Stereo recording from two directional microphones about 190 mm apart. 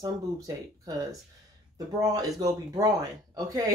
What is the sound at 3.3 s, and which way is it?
Speech, 20° right (ahead or behind).